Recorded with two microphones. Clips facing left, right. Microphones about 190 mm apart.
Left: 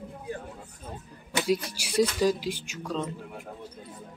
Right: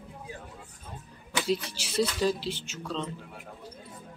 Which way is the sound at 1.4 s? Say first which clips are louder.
Left 2 dB; 10° left (ahead or behind).